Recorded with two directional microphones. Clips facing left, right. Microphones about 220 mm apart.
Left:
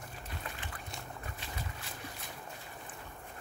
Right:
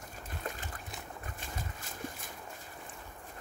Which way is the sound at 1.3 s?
45° right (ahead or behind).